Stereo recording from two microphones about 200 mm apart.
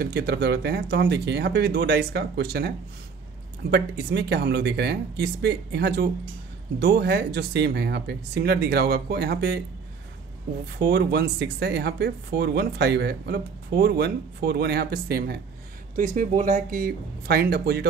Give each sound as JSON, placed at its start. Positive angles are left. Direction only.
{"t": 0.0, "sound": "speech", "side_deg": -50}
{"t": 3.7, "sound": "speech", "side_deg": -55}
{"t": 10.8, "sound": "speech", "side_deg": -55}
{"t": 16.2, "sound": "speech", "side_deg": -40}